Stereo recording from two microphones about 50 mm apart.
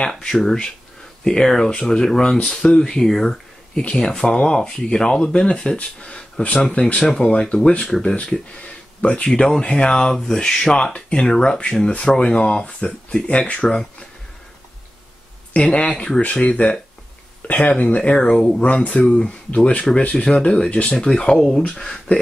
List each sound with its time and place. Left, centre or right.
0.2 s speech: centre
15.5 s speech: left; by 21.6 s centre
21.6 s speech: centre